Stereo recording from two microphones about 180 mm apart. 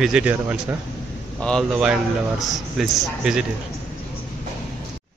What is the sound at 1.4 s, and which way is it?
Speech, 5° left (ahead or behind).